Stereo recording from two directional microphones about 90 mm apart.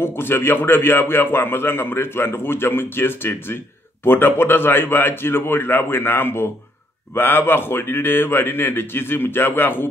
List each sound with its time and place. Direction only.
0.0 s a man's voice: 25° left (ahead or behind)